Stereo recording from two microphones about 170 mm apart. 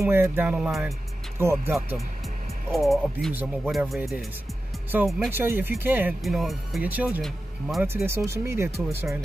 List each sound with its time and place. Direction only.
0.0 s music: 15° right (ahead or behind)
1.4 s music: 15° right (ahead or behind)
2.7 s speech: centre (ahead or behind)
3.3 s music: 5° right (ahead or behind)
6.2 s speech: centre (ahead or behind)
7.8 s music: 15° right (ahead or behind)